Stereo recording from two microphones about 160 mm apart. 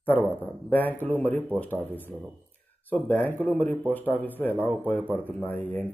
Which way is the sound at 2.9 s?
10° left (ahead or behind).